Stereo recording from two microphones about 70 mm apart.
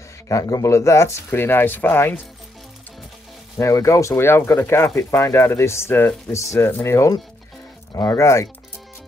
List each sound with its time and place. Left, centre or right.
0.3 s speech: left
1.3 s speech: left
3.5 s speech: left
6.3 s speech: left